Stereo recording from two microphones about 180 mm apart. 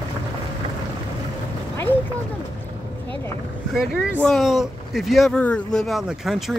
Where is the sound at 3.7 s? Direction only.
Centre (ahead or behind).